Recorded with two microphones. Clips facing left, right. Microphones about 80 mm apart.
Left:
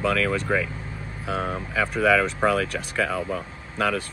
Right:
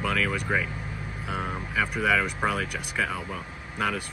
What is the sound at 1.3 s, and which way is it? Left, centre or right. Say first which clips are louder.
Speech: left 5 dB; left.